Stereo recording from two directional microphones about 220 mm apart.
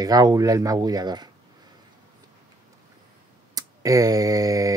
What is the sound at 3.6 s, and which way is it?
Speech, 15° right (ahead or behind).